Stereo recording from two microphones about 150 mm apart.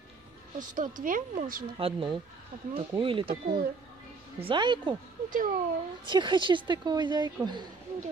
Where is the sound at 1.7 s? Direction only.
35° right (ahead or behind).